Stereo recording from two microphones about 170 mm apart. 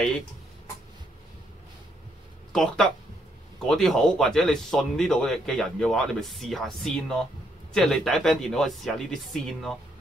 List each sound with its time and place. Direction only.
2.5 s speech: 5° left (ahead or behind)